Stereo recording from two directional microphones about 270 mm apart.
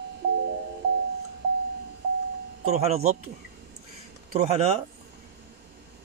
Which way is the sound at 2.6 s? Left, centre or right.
Right.